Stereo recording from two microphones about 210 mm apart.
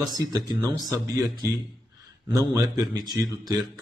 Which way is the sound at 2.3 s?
15° right (ahead or behind).